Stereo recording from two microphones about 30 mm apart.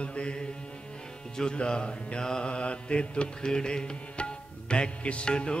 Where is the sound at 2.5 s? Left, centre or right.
Left.